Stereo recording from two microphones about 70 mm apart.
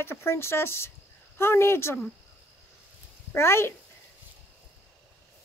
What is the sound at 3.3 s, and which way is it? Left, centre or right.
Speech, left.